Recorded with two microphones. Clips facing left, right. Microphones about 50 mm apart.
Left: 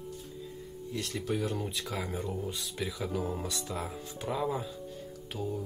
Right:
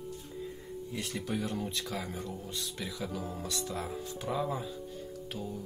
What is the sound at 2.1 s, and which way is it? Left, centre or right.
Speech, centre.